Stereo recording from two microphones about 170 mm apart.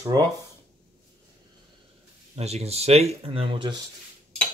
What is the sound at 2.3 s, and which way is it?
Speech, 40° right (ahead or behind).